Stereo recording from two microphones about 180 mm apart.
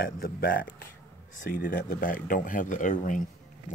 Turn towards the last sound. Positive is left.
turn(degrees=45)  # may be behind; listen again after turning